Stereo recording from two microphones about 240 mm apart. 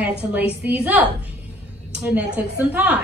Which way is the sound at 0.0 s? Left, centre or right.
Centre.